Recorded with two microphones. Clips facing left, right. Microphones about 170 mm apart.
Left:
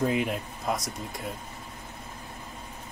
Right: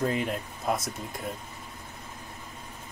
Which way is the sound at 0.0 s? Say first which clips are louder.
Left 2 dB; 10° left (ahead or behind).